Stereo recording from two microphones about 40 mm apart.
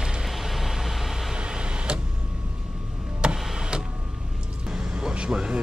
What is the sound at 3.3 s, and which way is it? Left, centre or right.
Tick-tock, centre.